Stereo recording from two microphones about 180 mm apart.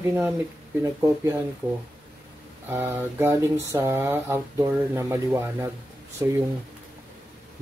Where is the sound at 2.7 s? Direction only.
10° right (ahead or behind).